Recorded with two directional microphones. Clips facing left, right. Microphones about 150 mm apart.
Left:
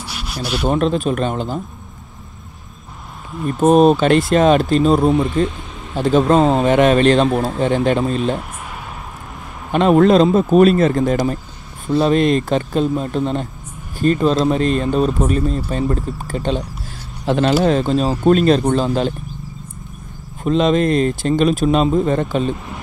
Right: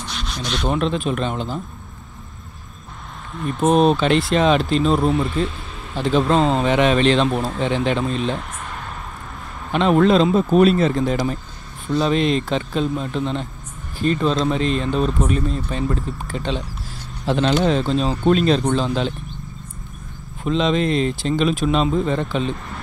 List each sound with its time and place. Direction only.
0.0 s a sound: 10° left (ahead or behind)
0.7 s speech: 45° left (ahead or behind)
3.6 s speech: 45° left (ahead or behind)
9.7 s speech: 45° left (ahead or behind)
20.4 s speech: 45° left (ahead or behind)